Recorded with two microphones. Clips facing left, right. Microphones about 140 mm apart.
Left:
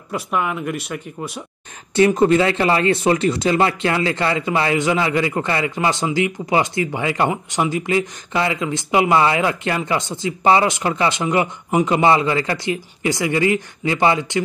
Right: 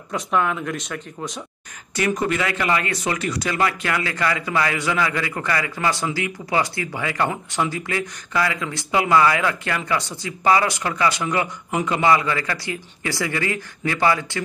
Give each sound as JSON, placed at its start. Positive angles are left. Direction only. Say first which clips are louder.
{"t": 0.1, "sound": "speech", "louder": "even", "side_deg": 5}
{"t": 2.0, "sound": "speech", "louder": "left 8 dB", "side_deg": 25}